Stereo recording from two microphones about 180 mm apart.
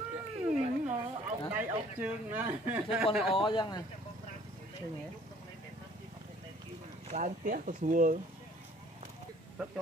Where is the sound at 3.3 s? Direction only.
25° left (ahead or behind).